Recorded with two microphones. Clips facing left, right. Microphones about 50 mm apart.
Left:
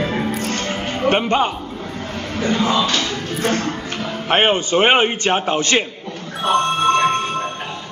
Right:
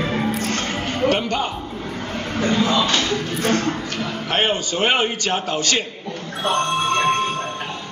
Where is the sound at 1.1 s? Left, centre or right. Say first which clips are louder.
Left 7 dB; left.